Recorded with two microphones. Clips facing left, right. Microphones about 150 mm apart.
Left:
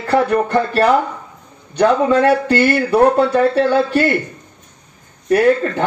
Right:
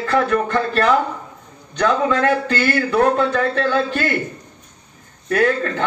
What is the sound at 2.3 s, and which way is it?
Speech, 25° left (ahead or behind).